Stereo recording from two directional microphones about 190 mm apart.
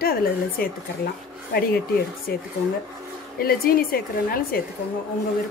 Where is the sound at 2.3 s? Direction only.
55° left (ahead or behind).